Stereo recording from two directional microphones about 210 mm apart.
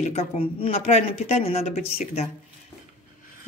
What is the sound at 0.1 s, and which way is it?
A woman's voice, 30° left (ahead or behind).